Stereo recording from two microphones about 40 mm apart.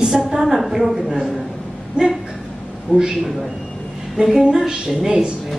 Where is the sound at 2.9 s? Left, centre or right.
Left.